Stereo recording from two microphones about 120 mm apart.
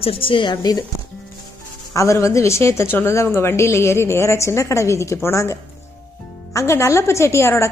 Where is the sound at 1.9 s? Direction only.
25° left (ahead or behind).